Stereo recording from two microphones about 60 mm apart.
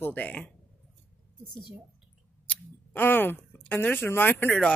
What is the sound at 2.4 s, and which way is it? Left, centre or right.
Speech, left.